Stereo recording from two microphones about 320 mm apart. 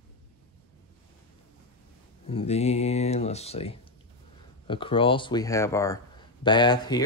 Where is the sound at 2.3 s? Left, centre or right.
Centre.